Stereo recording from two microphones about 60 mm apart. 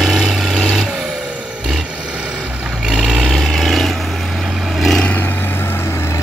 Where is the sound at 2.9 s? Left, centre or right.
Centre.